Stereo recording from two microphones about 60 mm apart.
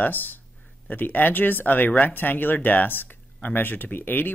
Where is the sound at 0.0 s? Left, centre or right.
Left.